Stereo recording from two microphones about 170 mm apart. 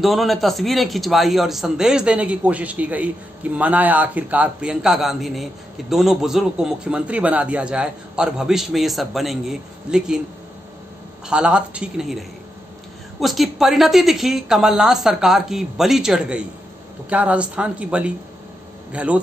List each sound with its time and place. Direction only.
0.0 s a man's voice: centre (ahead or behind)
11.2 s a man's voice: 5° right (ahead or behind)